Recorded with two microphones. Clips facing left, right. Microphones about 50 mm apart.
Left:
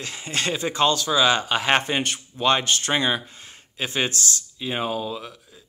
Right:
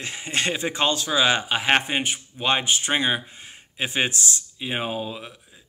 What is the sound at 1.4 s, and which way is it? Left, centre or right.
A man's voice, centre.